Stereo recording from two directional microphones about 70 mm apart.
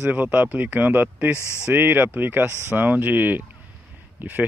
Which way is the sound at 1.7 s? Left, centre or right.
Right.